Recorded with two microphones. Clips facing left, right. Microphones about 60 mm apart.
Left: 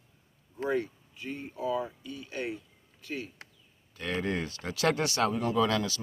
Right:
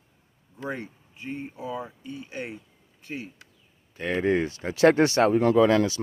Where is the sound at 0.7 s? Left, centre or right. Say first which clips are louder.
Left 4 dB; right.